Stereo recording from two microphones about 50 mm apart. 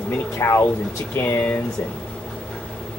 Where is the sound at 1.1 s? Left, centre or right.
Left.